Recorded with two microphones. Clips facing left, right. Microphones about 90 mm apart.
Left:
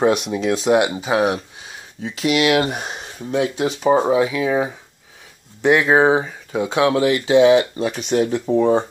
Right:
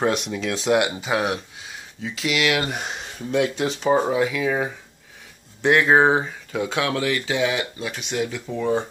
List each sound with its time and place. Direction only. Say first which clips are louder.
0.0 s speech: left 5 dB; 20° left (ahead or behind)
6.5 s speech: left 6 dB; 25° left (ahead or behind)